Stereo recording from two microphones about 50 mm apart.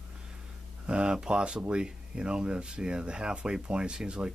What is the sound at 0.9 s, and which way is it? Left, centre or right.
Speech, centre.